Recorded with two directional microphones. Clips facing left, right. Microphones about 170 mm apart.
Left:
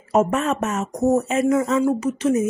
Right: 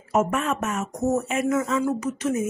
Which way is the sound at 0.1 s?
35° left (ahead or behind).